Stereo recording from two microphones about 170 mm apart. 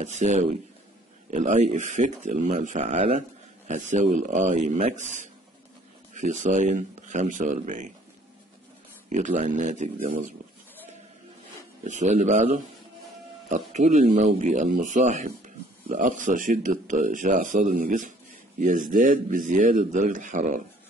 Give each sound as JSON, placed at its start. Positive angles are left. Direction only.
{"t": 0.0, "sound": "speech", "side_deg": -45}
{"t": 9.1, "sound": "speech", "side_deg": -45}
{"t": 11.8, "sound": "speech", "side_deg": -45}